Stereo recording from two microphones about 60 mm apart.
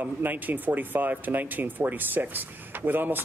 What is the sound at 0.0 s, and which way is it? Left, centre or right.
Speech, right.